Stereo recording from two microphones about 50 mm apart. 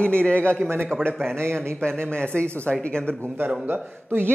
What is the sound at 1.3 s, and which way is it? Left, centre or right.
Speech, right.